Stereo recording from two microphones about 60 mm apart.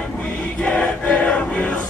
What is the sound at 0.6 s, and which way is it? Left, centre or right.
Choir, centre.